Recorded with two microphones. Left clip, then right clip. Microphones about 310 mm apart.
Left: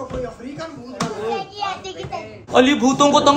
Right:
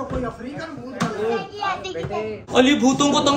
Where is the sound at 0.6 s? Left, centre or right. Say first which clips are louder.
Left 3 dB; centre.